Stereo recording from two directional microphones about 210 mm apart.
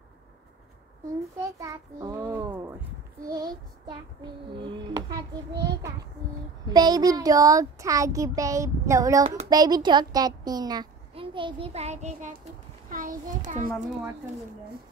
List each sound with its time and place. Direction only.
1.6 s a child's voice: 15° right (ahead or behind); by 13.7 s 35° right (ahead or behind)